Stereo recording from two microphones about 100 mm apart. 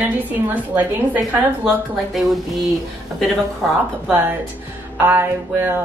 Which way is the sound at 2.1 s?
Centre (ahead or behind).